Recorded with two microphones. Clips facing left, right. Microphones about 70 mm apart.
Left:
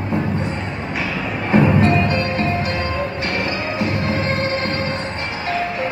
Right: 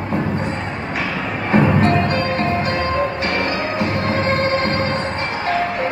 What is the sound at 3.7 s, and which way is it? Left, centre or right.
Music, centre.